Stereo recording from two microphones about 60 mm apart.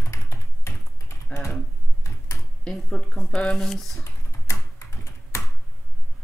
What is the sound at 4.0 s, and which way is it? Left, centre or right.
Computer keyboard, left.